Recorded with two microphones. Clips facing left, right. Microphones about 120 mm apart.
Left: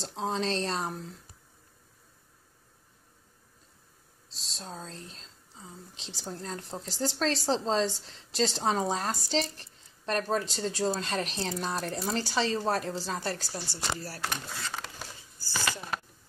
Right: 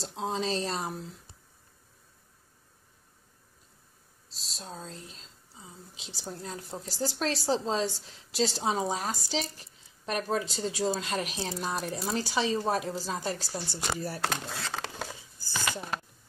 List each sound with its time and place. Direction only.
0.0 s speech: centre (ahead or behind)
4.6 s speech: 5° right (ahead or behind); by 14.2 s 20° right (ahead or behind)
14.2 s speech: 90° right